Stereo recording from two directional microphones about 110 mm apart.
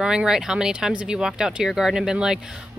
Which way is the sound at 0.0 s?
5° right (ahead or behind).